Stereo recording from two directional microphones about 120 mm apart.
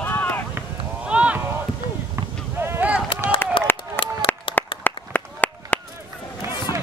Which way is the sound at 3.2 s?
25° right (ahead or behind).